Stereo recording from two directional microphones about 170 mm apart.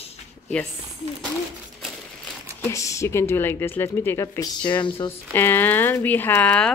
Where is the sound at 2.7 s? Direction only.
20° left (ahead or behind).